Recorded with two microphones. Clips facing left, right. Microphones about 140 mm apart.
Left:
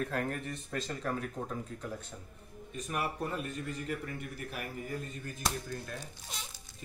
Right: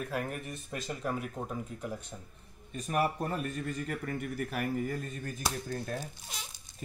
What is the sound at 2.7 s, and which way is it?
A man's voice, 40° right (ahead or behind).